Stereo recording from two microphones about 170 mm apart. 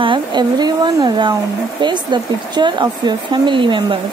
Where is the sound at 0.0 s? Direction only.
30° right (ahead or behind).